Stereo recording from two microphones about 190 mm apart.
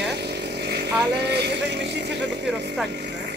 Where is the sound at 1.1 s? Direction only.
60° right (ahead or behind).